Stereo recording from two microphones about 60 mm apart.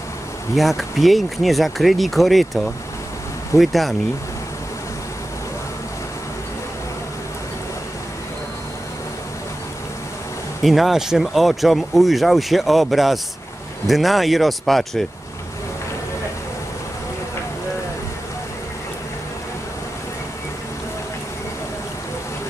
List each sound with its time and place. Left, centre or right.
0.6 s speech: centre
10.6 s speech: centre